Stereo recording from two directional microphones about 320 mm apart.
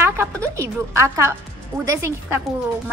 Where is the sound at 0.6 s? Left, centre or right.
Centre.